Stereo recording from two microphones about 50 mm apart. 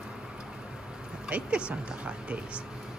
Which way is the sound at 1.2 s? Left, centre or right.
Right.